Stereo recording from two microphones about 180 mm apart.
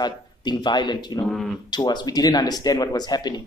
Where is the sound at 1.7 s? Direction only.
25° left (ahead or behind).